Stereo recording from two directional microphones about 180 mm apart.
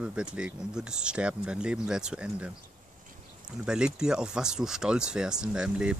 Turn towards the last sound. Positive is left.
turn(degrees=-5)  # may be behind; listen again after turning